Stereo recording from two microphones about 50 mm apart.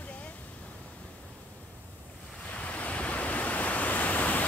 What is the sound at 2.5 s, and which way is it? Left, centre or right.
Waves, left.